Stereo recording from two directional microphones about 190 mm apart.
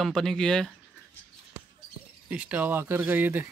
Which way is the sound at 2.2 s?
10° right (ahead or behind).